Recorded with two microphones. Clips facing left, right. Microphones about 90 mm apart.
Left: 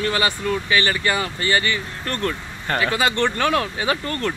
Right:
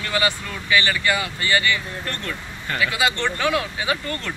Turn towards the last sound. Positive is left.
turn(degrees=35)  # may be behind; listen again after turning